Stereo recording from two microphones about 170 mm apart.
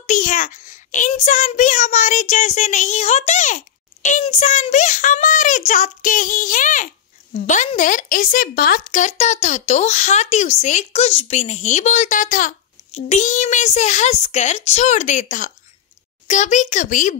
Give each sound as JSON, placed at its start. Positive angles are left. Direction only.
{"t": 0.0, "sound": "a child's voice", "side_deg": 50}